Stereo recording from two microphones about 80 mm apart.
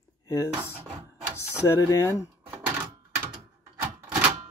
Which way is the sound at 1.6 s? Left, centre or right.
Left.